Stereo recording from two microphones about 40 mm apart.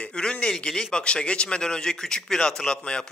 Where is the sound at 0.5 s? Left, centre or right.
Centre.